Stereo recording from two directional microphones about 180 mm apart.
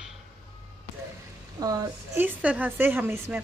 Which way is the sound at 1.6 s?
20° right (ahead or behind).